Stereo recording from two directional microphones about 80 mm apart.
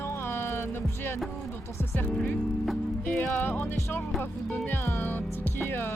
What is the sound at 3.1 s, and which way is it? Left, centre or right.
Music, left.